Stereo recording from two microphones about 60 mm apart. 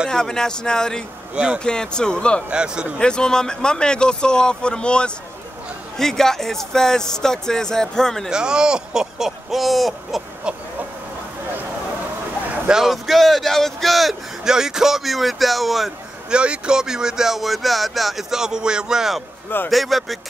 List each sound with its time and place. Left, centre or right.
0.1 s speech: centre
1.3 s speech: centre
1.6 s speech: centre
2.5 s speech: centre
3.0 s speech: centre
8.3 s speech: centre
10.5 s speech: centre
12.6 s a man's voice: centre
16.3 s a man's voice: centre